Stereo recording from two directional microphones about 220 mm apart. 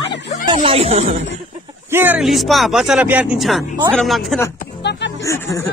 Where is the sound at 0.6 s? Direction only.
25° right (ahead or behind).